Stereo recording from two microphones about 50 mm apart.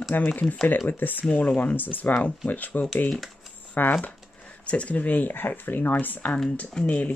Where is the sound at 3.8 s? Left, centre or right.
Left.